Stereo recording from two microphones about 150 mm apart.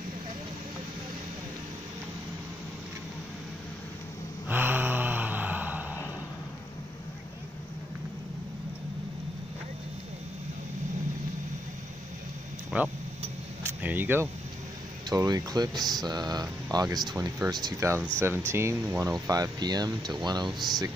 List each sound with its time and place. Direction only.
4.5 s gasp: 10° right (ahead or behind)
12.7 s speech: 5° right (ahead or behind)
15.0 s speech: 25° right (ahead or behind)
20.5 s speech: centre (ahead or behind)